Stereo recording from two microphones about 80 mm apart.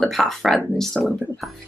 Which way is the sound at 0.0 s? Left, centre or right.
Centre.